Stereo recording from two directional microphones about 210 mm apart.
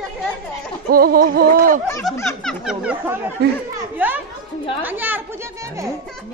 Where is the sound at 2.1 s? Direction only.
10° left (ahead or behind).